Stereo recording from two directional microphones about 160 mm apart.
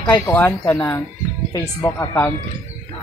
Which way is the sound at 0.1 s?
15° left (ahead or behind).